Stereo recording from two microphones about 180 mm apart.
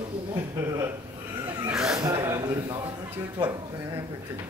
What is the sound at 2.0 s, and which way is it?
Speech, 15° right (ahead or behind).